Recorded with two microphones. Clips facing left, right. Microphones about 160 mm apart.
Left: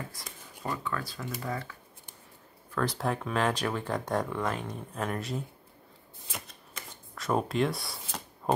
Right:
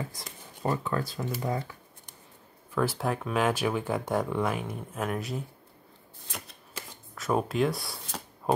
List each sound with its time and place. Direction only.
0.6 s speech: 35° right (ahead or behind)
1.4 s speech: 20° right (ahead or behind)
2.7 s speech: 5° right (ahead or behind)
7.2 s speech: centre (ahead or behind)